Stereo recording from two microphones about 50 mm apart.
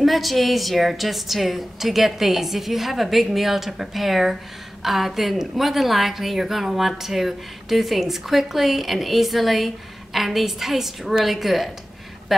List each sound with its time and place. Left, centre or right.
0.0 s a woman's voice: centre